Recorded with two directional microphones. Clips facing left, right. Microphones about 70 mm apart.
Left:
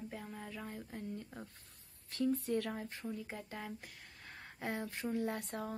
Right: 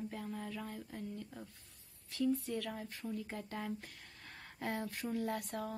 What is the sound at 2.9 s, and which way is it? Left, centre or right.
Speech, left.